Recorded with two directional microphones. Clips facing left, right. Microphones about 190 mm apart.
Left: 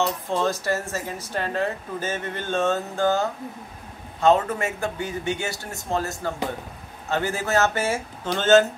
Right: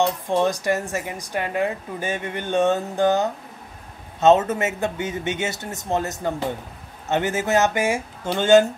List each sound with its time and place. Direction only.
0.0 s speech: 15° right (ahead or behind)